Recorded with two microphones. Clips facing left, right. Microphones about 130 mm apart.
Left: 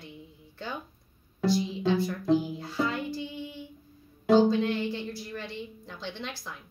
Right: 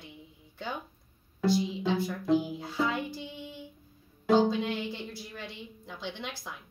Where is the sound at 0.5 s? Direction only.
15° right (ahead or behind).